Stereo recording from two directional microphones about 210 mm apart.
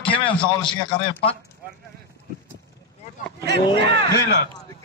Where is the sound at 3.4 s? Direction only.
50° right (ahead or behind).